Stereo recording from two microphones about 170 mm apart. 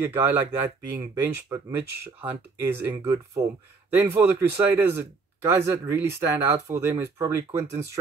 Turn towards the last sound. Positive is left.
turn(degrees=-15)  # may be behind; listen again after turning